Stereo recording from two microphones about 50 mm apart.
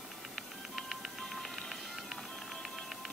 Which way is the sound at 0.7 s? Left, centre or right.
Centre.